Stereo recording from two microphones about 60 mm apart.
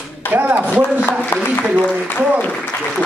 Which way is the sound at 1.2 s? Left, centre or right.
Left.